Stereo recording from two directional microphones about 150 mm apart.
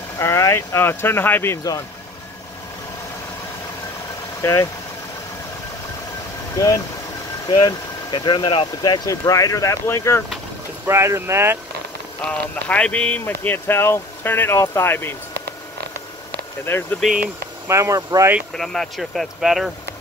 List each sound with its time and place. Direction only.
0.2 s speech: 20° left (ahead or behind)
4.4 s speech: 20° left (ahead or behind)
7.4 s speech: 30° left (ahead or behind)
10.9 s speech: 20° right (ahead or behind)
12.3 s speech: 10° left (ahead or behind)
16.7 s speech: 10° left (ahead or behind)
17.6 s speech: 20° right (ahead or behind)
18.5 s speech: centre (ahead or behind)